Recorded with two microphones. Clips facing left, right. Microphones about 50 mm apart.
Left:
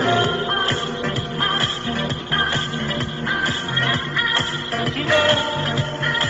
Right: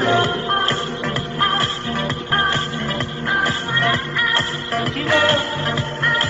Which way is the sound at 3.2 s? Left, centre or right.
Right.